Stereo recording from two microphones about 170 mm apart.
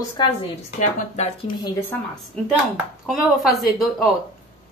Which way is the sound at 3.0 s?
Centre (ahead or behind).